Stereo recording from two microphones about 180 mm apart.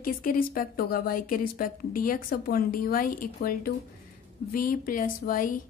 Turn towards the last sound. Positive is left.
turn(degrees=50)  # may be behind; listen again after turning